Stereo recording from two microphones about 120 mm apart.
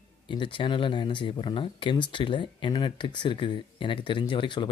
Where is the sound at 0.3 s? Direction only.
45° left (ahead or behind).